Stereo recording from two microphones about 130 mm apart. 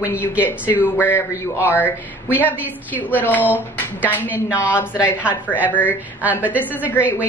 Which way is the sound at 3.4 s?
10° right (ahead or behind).